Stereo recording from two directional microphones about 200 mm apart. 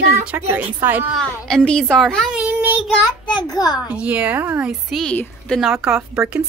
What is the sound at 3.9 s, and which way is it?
Speech, 5° right (ahead or behind).